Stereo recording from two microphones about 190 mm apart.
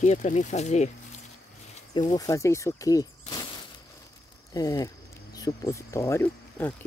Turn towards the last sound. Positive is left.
turn(degrees=10)  # may be behind; listen again after turning